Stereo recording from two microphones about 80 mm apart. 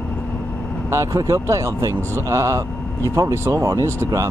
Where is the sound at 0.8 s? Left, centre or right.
Right.